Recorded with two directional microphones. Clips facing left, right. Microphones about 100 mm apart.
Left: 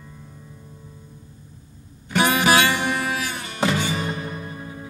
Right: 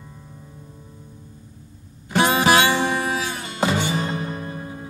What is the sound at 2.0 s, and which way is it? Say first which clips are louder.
Music: right 1 dB; 25° right (ahead or behind).